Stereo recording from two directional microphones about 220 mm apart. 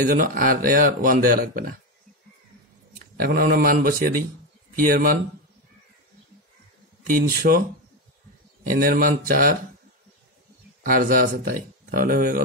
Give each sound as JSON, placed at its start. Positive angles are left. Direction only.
{"t": 0.0, "sound": "speech", "side_deg": -40}
{"t": 3.2, "sound": "speech", "side_deg": -40}
{"t": 7.1, "sound": "speech", "side_deg": -40}
{"t": 8.6, "sound": "speech", "side_deg": -40}
{"t": 10.8, "sound": "speech", "side_deg": -40}